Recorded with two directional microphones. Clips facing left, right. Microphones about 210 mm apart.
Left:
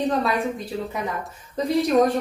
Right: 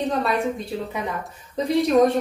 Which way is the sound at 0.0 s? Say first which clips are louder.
Left 1 dB; centre (ahead or behind).